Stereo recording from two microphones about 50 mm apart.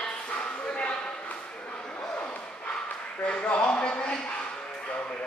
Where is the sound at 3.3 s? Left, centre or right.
Left.